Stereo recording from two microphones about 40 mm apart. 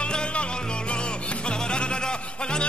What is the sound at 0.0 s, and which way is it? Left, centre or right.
Music, left.